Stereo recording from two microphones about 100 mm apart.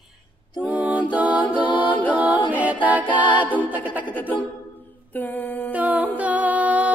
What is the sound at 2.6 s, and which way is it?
Music, 15° right (ahead or behind).